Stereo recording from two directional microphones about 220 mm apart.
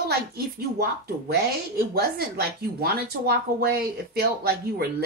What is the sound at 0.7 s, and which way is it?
Speech, 45° right (ahead or behind).